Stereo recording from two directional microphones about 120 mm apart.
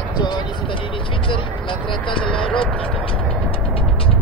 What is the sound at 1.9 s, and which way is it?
Vehicle, 45° left (ahead or behind).